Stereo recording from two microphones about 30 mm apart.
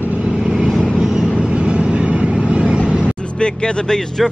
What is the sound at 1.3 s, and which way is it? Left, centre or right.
Vehicle, right.